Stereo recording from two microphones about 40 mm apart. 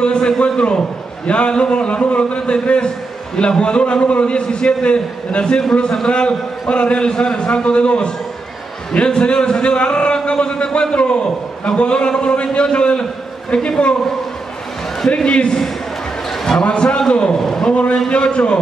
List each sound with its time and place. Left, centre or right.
0.0 s a man's voice: left
15.0 s a man's voice: left
16.6 s a man's voice: left
18.0 s a man's voice: left